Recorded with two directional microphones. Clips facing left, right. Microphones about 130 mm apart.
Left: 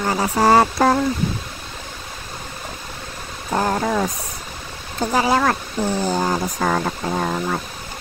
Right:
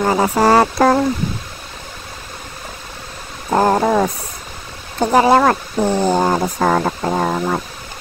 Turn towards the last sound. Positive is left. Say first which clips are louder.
# right 4 dB
turn(degrees=-65)  # may be behind; listen again after turning